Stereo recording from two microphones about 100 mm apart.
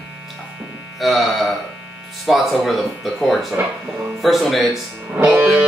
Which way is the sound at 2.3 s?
Centre (ahead or behind).